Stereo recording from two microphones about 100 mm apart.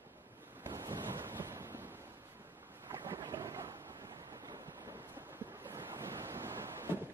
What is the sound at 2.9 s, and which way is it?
Boat, 25° right (ahead or behind).